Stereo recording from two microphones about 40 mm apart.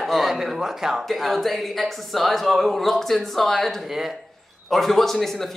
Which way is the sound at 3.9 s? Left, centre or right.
Centre.